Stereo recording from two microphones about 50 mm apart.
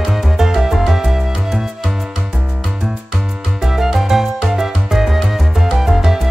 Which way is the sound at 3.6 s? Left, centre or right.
Centre.